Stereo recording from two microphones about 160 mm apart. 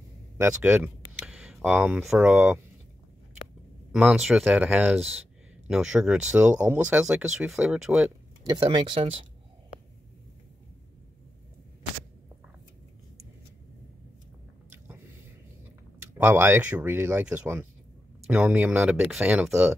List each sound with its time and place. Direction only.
0.4 s speech: 10° right (ahead or behind)
1.1 s a sound: 5° right (ahead or behind)
2.0 s speech: 10° right (ahead or behind)
3.9 s speech: 5° right (ahead or behind)
8.5 s speech: 30° right (ahead or behind)
16.0 s speech: 15° right (ahead or behind)